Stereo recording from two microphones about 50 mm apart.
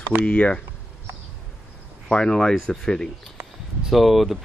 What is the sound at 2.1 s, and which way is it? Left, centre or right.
Speech, centre.